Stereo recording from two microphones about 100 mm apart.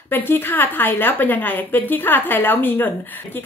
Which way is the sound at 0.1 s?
20° left (ahead or behind).